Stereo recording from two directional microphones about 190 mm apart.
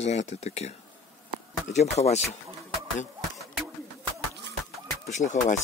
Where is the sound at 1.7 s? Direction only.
35° left (ahead or behind).